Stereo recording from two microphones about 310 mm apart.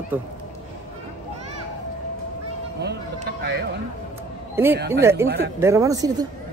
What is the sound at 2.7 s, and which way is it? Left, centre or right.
Music, right.